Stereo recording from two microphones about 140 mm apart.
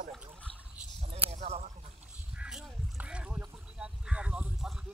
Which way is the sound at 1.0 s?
45° right (ahead or behind).